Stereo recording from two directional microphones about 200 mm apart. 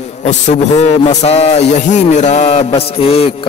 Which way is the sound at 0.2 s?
35° left (ahead or behind).